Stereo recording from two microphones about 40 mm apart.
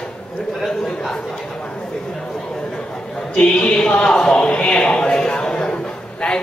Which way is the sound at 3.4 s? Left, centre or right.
Left.